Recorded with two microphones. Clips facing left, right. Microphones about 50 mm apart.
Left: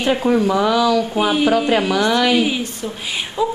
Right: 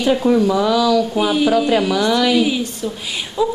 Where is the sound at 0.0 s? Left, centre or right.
Centre.